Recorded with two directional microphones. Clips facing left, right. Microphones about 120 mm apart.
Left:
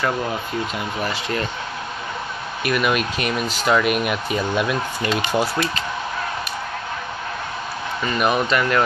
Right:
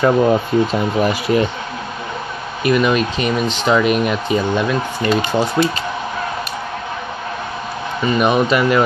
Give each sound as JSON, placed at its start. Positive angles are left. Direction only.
{"t": 0.2, "sound": "speech", "side_deg": -40}
{"t": 1.0, "sound": "speech", "side_deg": -15}
{"t": 2.6, "sound": "speech", "side_deg": 5}
{"t": 5.3, "sound": "speech", "side_deg": -5}
{"t": 8.0, "sound": "speech", "side_deg": -5}